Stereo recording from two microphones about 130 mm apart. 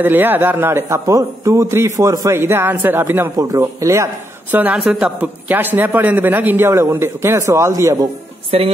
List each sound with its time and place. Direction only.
0.0 s a man's voice: 15° right (ahead or behind)
8.5 s a woman's voice: 50° right (ahead or behind)